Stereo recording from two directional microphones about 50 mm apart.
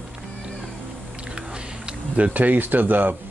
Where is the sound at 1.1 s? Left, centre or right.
Right.